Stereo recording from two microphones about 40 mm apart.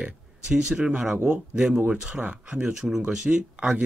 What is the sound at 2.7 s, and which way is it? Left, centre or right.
Speech, centre.